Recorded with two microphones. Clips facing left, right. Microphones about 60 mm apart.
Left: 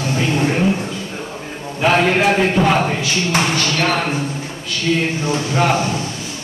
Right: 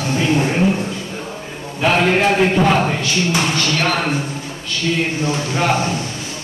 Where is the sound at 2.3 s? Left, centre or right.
Centre.